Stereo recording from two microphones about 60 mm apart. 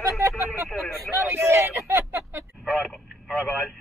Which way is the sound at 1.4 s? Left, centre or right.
Right.